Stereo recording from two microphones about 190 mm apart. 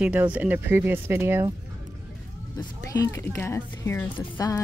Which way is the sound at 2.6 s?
20° left (ahead or behind).